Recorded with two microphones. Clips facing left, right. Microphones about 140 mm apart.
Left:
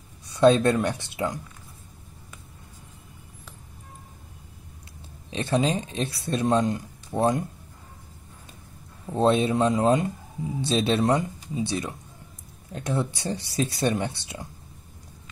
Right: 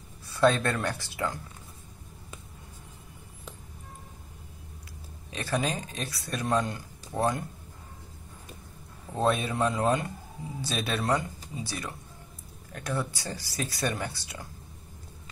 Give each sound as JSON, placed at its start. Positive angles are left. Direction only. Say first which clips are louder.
{"t": 0.3, "sound": "speech", "louder": "left 6 dB", "side_deg": 20}
{"t": 5.3, "sound": "speech", "louder": "left 6 dB", "side_deg": 25}
{"t": 9.1, "sound": "speech", "louder": "left 6 dB", "side_deg": 25}